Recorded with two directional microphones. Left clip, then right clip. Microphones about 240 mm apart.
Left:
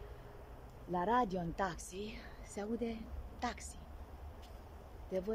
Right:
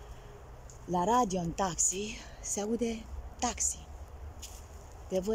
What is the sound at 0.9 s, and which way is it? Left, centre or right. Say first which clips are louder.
Speech: right 6 dB; centre.